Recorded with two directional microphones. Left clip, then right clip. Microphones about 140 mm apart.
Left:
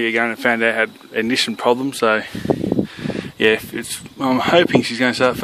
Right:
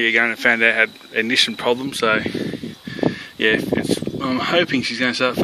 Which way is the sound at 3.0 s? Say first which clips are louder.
Even; 60° left (ahead or behind).